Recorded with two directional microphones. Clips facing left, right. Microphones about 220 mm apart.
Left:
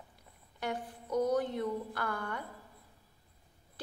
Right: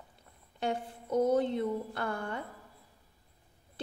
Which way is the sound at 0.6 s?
25° right (ahead or behind).